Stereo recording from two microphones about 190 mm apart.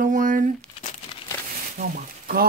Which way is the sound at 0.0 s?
45° right (ahead or behind).